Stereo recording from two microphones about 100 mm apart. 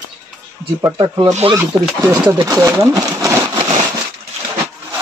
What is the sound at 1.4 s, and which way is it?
Speech, 70° right (ahead or behind).